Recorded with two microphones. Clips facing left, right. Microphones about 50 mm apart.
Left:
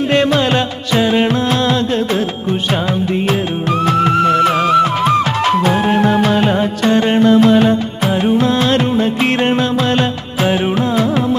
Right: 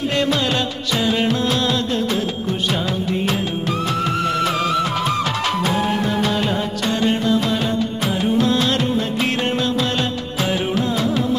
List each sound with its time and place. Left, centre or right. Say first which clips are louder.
0.1 s music: left 7 dB; left
3.8 s music: left 10 dB; left